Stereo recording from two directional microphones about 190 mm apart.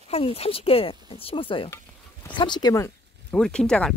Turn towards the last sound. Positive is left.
turn(degrees=5)  # may be behind; listen again after turning